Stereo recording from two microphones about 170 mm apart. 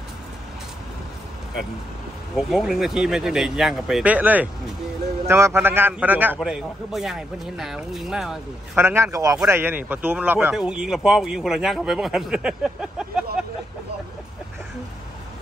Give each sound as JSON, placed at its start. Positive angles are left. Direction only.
{"t": 2.3, "sound": "a man's voice", "side_deg": -5}
{"t": 8.8, "sound": "a man's voice", "side_deg": -15}